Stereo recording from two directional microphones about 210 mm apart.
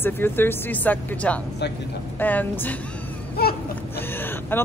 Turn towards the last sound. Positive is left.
turn(degrees=10)  # may be behind; listen again after turning